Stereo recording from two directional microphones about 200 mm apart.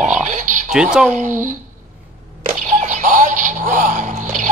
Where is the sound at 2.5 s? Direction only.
40° right (ahead or behind).